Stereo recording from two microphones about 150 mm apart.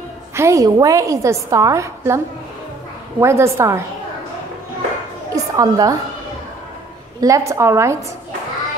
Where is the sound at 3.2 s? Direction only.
15° right (ahead or behind).